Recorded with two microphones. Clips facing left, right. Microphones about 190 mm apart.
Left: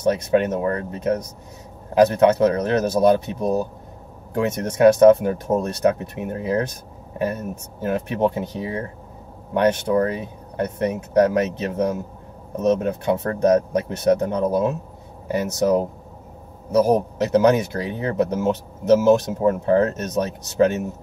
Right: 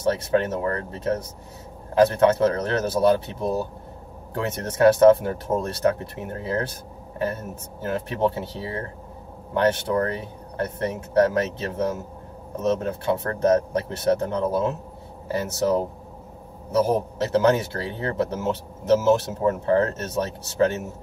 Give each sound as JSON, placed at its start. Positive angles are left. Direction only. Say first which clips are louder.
{"t": 0.0, "sound": "speech", "louder": "left 3 dB", "side_deg": 15}
{"t": 7.8, "sound": "speech", "louder": "left 3 dB", "side_deg": 15}